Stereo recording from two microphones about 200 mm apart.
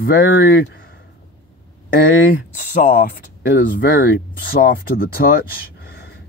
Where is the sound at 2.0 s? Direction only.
45° left (ahead or behind).